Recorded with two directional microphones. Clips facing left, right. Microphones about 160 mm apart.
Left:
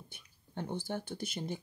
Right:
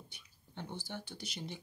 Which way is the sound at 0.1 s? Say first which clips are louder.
Left 6 dB; 50° left (ahead or behind).